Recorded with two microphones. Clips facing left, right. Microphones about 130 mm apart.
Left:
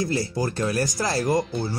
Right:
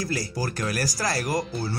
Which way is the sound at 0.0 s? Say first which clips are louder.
Left 4 dB; 25° left (ahead or behind).